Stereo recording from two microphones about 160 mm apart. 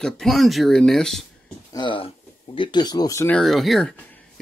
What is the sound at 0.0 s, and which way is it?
Speech, centre (ahead or behind).